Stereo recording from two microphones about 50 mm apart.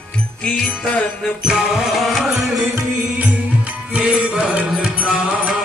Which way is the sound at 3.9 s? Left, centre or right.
Right.